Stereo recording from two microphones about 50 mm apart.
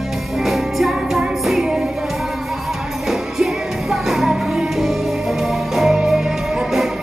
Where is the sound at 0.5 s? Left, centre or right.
Centre.